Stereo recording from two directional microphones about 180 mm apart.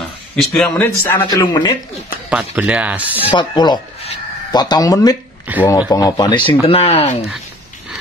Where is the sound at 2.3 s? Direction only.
5° right (ahead or behind).